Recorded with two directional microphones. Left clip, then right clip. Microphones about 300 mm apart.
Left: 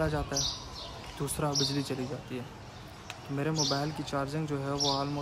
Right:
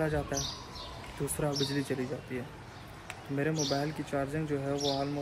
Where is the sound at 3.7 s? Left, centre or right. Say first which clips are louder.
Even; centre.